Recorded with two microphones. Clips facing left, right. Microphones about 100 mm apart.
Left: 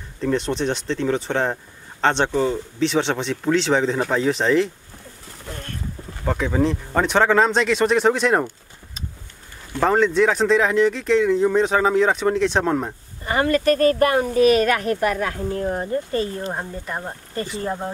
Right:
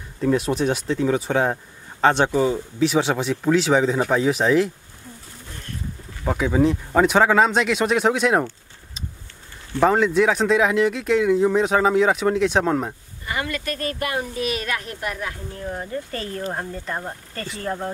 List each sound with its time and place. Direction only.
0.2 s speech: 5° right (ahead or behind)
6.2 s speech: 5° right (ahead or behind)
9.8 s speech: 5° right (ahead or behind)
13.2 s speech: 40° left (ahead or behind)
15.6 s speech: 35° left (ahead or behind)
16.5 s speech: 10° left (ahead or behind)